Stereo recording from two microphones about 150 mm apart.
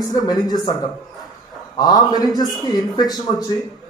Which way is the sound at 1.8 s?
25° left (ahead or behind).